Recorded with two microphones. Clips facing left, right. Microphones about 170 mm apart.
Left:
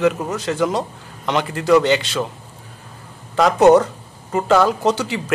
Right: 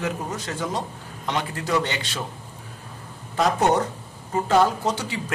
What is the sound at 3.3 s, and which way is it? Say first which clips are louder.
Speech: left 9 dB; 90° left.